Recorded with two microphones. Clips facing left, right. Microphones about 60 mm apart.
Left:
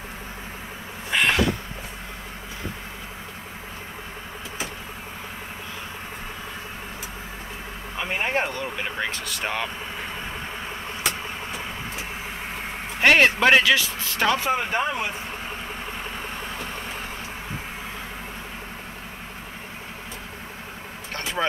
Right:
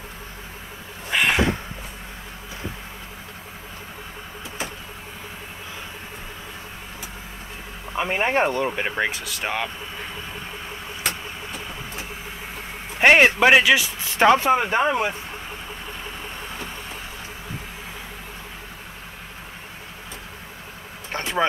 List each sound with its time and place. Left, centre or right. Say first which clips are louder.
1.1 s a sound: right 1 dB; centre
8.0 s speech: right 4 dB; right
9.1 s speech: right 1 dB; centre
13.0 s speech: right 2 dB; right
21.1 s vehicle: right 3 dB; right